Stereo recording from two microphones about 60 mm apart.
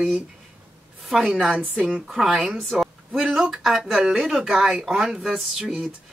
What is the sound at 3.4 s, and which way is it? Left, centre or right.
Speech, centre.